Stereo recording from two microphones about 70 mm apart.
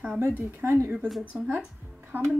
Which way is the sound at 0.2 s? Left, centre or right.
Right.